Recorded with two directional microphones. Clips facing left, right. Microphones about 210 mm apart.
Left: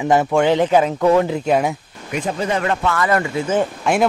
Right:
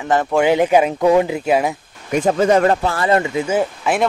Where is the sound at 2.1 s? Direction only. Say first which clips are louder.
Right 7 dB; 45° right (ahead or behind); by 4.0 s 5° right (ahead or behind).